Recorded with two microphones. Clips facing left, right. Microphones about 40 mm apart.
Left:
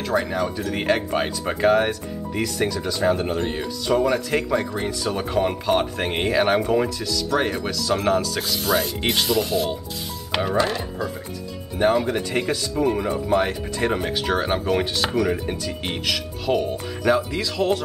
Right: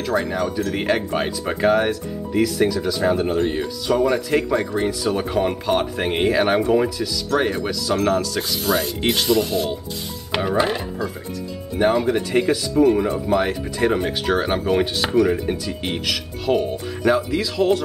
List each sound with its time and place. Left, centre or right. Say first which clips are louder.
0.0 s speech: right 1 dB; centre
11.8 s speech: right 2 dB; centre